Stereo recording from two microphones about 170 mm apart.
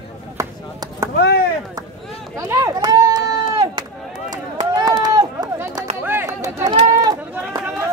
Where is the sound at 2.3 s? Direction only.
20° right (ahead or behind).